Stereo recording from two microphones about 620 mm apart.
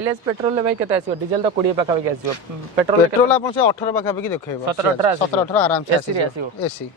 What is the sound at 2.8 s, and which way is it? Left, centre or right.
Speech, right.